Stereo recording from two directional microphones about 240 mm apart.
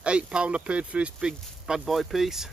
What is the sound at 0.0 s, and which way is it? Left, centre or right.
Speech, centre.